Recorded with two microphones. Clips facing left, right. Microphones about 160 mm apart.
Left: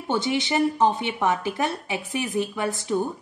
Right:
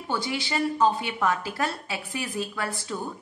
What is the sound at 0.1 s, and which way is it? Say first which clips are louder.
A woman's voice: left 5 dB; 20° left (ahead or behind).